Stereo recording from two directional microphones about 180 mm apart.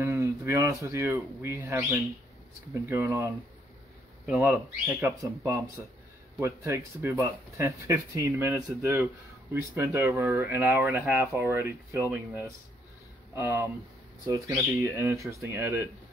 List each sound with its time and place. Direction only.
0.0 s speech: 15° right (ahead or behind)
4.4 s speech: 15° right (ahead or behind)
13.4 s speech: 15° right (ahead or behind)